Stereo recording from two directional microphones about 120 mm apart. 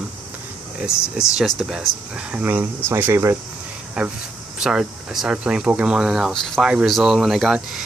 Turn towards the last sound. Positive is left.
turn(degrees=0)  # may be behind; listen again after turning